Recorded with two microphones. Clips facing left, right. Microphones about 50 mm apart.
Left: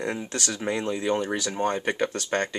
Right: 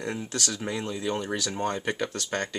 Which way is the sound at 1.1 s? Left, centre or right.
Centre.